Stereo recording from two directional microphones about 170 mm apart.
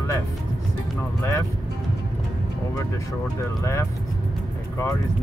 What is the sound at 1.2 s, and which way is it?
Speech, 15° left (ahead or behind).